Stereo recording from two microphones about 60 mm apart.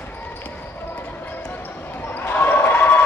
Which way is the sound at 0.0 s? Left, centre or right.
Left.